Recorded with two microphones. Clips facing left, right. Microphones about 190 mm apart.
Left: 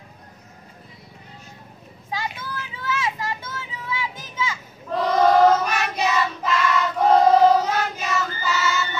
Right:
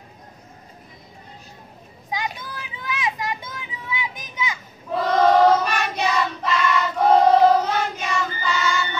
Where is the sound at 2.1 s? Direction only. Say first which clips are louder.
Right 1 dB; 15° right (ahead or behind).